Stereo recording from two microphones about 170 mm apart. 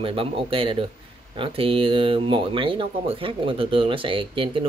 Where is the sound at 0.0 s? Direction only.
30° right (ahead or behind).